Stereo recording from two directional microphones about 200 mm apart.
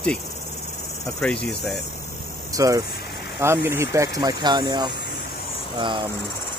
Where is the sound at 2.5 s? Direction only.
15° right (ahead or behind).